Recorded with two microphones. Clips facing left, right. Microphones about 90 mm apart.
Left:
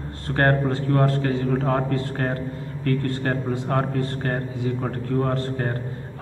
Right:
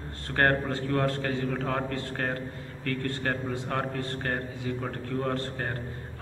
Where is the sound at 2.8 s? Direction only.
35° left (ahead or behind).